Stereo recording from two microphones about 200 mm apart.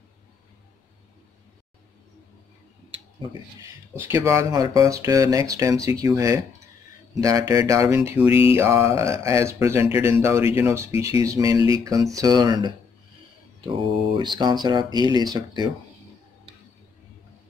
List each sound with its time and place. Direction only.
3.9 s speech: 15° right (ahead or behind)
8.3 s a sound: 30° left (ahead or behind)
8.5 s speech: 15° right (ahead or behind)
14.1 s speech: 20° right (ahead or behind)